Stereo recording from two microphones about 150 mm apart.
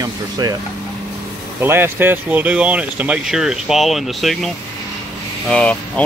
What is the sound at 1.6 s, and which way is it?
Speech, 15° right (ahead or behind).